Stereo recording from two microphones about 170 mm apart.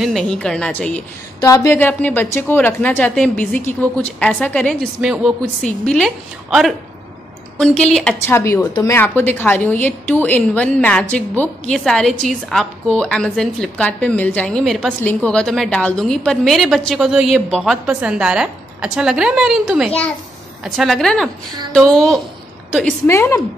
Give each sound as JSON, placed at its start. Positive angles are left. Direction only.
{"t": 0.0, "sound": "a woman's voice", "side_deg": 0}
{"t": 1.4, "sound": "a woman's voice", "side_deg": 20}
{"t": 8.3, "sound": "a woman's voice", "side_deg": 15}
{"t": 23.1, "sound": "a woman's voice", "side_deg": 15}